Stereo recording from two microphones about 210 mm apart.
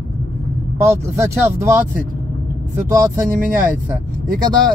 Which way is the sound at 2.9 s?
15° right (ahead or behind).